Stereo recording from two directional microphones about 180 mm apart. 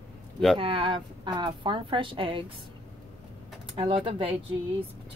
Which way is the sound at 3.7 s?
30° right (ahead or behind).